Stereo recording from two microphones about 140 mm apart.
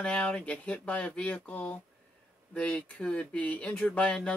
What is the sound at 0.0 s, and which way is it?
Speech, 10° left (ahead or behind).